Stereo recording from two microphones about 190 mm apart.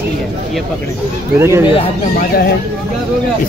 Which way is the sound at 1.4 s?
15° right (ahead or behind).